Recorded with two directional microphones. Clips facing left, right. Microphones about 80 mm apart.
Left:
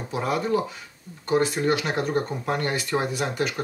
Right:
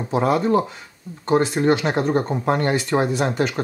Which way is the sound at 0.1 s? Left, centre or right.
Right.